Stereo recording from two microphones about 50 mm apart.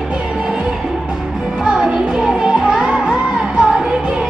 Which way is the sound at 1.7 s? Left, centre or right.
Centre.